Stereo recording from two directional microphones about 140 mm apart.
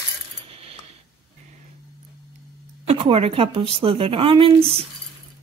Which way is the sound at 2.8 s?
40° right (ahead or behind).